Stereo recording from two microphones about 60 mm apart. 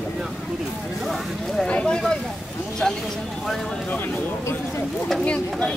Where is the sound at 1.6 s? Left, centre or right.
Centre.